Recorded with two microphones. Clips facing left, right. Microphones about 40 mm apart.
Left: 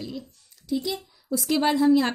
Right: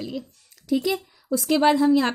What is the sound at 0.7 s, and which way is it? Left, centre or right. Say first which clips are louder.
Speech: right 5 dB; right.